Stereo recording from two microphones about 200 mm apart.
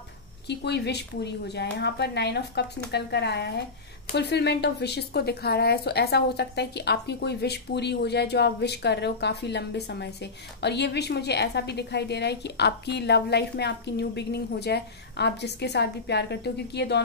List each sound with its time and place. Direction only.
0.5 s speech: 55° left (ahead or behind)